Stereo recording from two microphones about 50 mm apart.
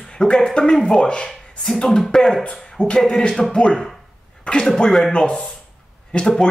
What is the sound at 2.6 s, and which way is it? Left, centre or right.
Speech, centre.